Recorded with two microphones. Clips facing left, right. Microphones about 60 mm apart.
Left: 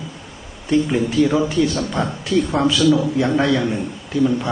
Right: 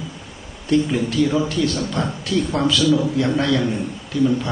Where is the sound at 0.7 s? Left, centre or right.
Centre.